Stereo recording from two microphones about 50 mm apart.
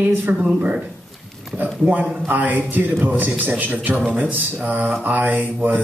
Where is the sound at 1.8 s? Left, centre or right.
Right.